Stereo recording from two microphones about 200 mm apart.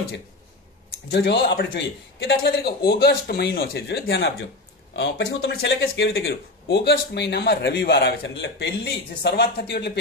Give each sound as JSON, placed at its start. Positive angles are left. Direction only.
{"t": 1.1, "sound": "a man's voice", "side_deg": 55}